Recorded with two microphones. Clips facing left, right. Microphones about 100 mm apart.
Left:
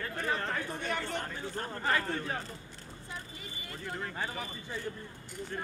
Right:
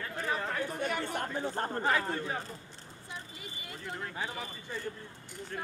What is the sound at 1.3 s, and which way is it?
Speech, 40° right (ahead or behind).